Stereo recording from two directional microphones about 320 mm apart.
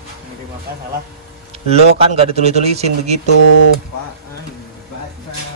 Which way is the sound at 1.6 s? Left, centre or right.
Centre.